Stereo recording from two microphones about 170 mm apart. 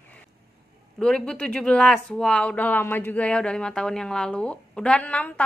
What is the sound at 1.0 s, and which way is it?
A woman's voice, 5° left (ahead or behind).